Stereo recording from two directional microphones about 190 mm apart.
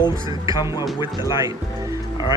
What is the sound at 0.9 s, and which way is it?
Speech, 20° left (ahead or behind).